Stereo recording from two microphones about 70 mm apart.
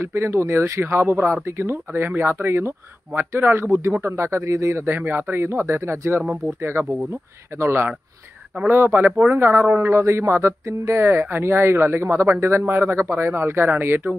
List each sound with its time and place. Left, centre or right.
0.0 s speech: right